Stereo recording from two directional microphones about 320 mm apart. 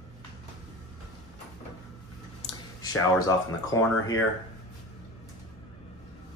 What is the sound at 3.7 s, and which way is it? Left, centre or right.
Speech, centre.